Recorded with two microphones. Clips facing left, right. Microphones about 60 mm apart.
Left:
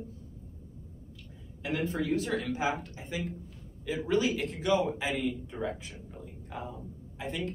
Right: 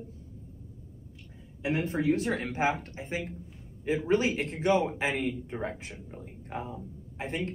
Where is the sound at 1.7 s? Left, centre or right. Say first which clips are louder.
Right 2 dB; right.